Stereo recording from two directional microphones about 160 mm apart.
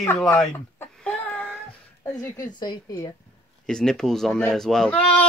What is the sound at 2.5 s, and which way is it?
Speech, 25° left (ahead or behind).